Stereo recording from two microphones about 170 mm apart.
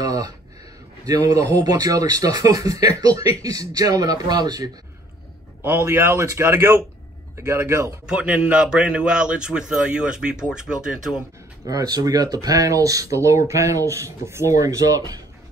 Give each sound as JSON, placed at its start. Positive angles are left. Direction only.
{"t": 0.0, "sound": "a sound", "side_deg": -20}
{"t": 1.0, "sound": "a man's voice", "side_deg": -20}
{"t": 11.6, "sound": "a man's voice", "side_deg": -20}